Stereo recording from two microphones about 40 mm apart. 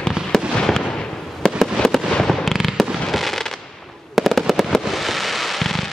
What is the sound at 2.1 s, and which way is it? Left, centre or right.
Fireworks, centre.